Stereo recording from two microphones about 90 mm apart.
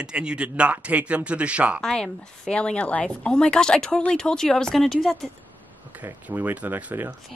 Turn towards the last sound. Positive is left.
turn(degrees=-20)  # may be behind; listen again after turning